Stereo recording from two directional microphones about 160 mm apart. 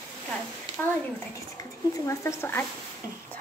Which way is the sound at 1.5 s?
20° left (ahead or behind).